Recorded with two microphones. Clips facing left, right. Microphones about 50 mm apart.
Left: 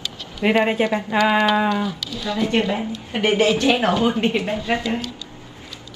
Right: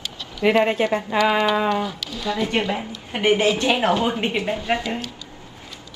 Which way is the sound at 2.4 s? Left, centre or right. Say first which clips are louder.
Left 3 dB; right.